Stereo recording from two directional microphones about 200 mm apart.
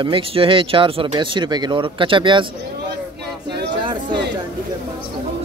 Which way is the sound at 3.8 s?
25° right (ahead or behind).